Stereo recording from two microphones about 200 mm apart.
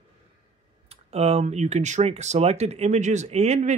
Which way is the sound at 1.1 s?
30° right (ahead or behind).